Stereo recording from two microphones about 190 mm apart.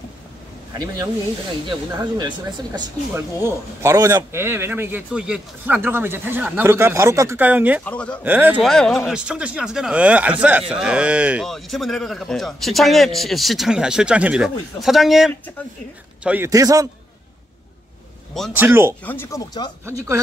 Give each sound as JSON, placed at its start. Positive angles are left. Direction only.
{"t": 1.7, "sound": "speech", "side_deg": -20}
{"t": 7.8, "sound": "speech", "side_deg": 5}
{"t": 8.2, "sound": "speech", "side_deg": -10}
{"t": 16.3, "sound": "speech", "side_deg": -15}
{"t": 18.6, "sound": "speech", "side_deg": -15}
{"t": 19.0, "sound": "speech", "side_deg": 15}
{"t": 19.8, "sound": "speech", "side_deg": -15}